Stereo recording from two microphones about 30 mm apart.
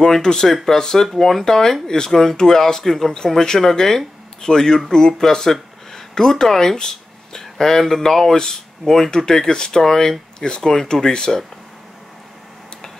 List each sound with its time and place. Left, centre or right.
0.2 s speech: centre